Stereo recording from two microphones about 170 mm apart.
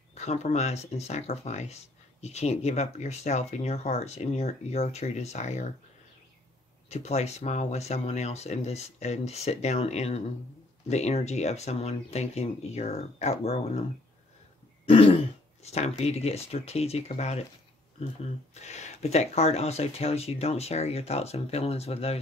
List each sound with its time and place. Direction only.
0.1 s speech: 40° left (ahead or behind)
6.9 s speech: 40° left (ahead or behind)
14.9 s speech: 35° left (ahead or behind)
18.5 s speech: 40° left (ahead or behind)